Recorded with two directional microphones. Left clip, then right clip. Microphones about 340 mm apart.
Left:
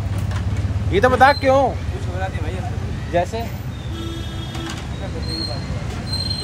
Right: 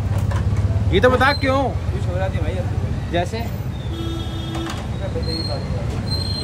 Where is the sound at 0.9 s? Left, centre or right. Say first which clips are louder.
Left 2 dB; centre.